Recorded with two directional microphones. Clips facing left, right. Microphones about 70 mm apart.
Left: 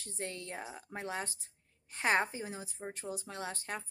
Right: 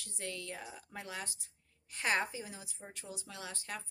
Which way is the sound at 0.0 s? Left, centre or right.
Left.